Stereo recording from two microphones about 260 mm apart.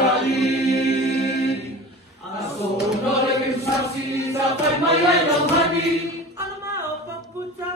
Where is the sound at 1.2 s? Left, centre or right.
Left.